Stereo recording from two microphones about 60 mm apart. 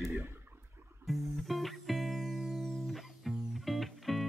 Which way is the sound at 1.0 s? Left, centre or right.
Centre.